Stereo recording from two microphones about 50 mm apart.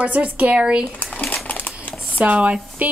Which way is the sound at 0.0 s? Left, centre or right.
Right.